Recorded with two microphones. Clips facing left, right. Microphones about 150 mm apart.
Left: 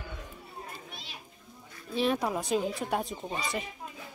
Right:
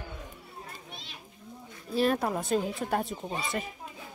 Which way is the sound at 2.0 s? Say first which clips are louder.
Right 2 dB; centre (ahead or behind).